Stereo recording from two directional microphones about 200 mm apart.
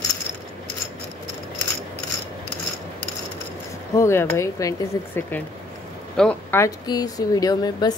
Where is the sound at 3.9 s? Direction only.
15° left (ahead or behind).